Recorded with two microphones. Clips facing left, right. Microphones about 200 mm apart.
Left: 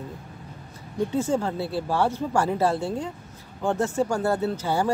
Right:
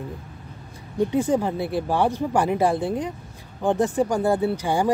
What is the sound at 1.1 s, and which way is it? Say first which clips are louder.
Speech: right 2 dB; 15° right (ahead or behind).